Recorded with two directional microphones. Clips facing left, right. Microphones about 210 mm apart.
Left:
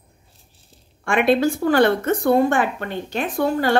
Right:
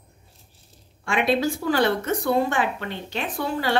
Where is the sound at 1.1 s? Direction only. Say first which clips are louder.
Left 5 dB; 55° left (ahead or behind).